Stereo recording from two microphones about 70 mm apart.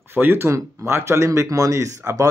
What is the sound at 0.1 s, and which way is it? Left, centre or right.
Speech, right.